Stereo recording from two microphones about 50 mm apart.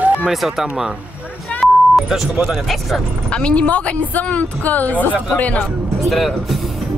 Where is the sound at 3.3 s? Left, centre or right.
Left.